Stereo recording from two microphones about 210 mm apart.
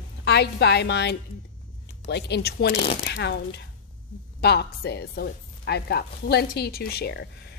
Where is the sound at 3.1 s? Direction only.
55° left (ahead or behind).